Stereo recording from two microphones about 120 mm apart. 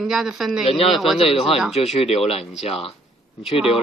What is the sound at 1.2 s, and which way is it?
Speech, 55° left (ahead or behind).